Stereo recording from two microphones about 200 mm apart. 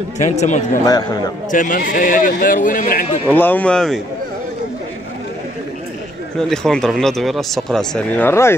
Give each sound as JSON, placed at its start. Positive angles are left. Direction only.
{"t": 0.2, "sound": "speech", "side_deg": 35}
{"t": 0.8, "sound": "a man's voice", "side_deg": 20}
{"t": 1.5, "sound": "a man's voice", "side_deg": 40}
{"t": 3.3, "sound": "speech", "side_deg": 10}
{"t": 6.5, "sound": "speech", "side_deg": 5}